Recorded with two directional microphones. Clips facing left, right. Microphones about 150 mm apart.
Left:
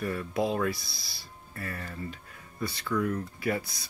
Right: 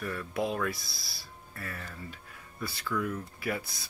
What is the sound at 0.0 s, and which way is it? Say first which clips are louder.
Speech: left 4 dB; 25° left (ahead or behind).